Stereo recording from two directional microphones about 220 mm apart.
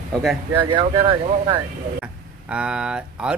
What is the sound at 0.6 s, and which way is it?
Speech, 25° right (ahead or behind).